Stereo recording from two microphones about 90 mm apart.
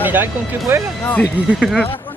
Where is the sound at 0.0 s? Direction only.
20° right (ahead or behind).